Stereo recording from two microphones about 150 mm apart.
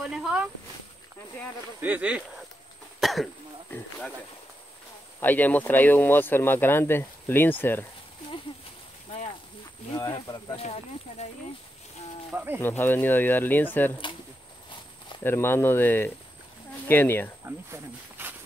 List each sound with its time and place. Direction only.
0.0 s speech: centre (ahead or behind)
1.8 s speech: 10° right (ahead or behind)
3.0 s cough: centre (ahead or behind)
5.2 s speech: 10° left (ahead or behind)
10.1 s speech: 25° left (ahead or behind)
10.5 s speech: 45° left (ahead or behind)
12.3 s speech: 10° right (ahead or behind)
12.6 s speech: 15° left (ahead or behind)
14.7 s a sound: 35° left (ahead or behind)
15.2 s speech: 15° left (ahead or behind)
17.5 s speech: 15° right (ahead or behind)